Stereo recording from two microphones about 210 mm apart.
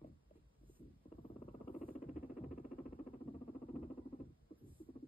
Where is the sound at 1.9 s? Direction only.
40° left (ahead or behind).